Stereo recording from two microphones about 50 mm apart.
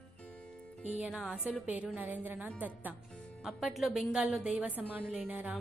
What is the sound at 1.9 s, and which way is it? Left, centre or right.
A woman's voice, right.